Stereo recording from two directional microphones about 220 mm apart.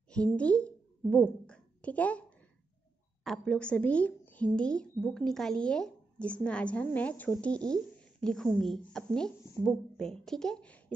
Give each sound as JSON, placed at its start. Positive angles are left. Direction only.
{"t": 0.1, "sound": "a woman's voice", "side_deg": 5}
{"t": 7.5, "sound": "speech", "side_deg": -15}
{"t": 8.0, "sound": "a woman's voice", "side_deg": 5}